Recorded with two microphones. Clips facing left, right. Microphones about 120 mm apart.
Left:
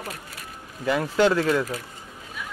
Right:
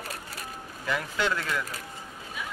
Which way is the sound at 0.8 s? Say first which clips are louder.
Left 9 dB; 40° left (ahead or behind).